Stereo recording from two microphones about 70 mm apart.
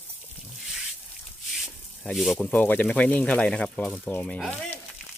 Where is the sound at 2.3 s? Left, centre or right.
Left.